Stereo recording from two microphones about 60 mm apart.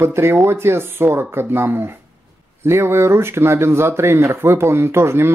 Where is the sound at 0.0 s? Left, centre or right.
Right.